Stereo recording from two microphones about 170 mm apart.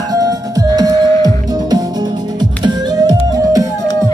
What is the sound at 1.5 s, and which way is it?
Music, 25° right (ahead or behind).